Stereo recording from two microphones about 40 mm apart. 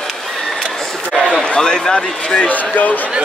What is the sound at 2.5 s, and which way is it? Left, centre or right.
Speech, left.